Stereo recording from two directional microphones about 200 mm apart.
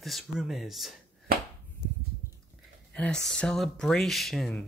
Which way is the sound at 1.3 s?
50° right (ahead or behind).